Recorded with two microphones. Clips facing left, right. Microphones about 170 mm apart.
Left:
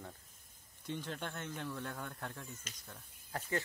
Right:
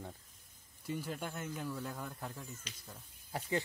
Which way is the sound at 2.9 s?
15° right (ahead or behind).